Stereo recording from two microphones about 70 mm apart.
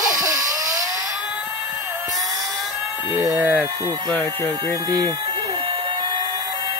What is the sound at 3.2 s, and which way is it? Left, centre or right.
Speech, right.